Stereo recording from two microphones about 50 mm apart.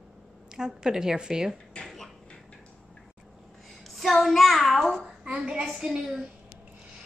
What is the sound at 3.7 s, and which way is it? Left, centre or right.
Speech, centre.